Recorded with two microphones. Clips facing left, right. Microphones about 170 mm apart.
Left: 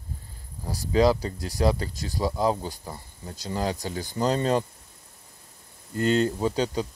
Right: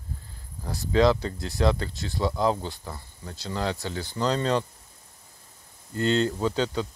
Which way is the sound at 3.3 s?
40° left (ahead or behind).